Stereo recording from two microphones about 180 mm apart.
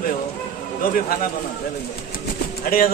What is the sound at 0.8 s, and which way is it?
Speech, 50° left (ahead or behind).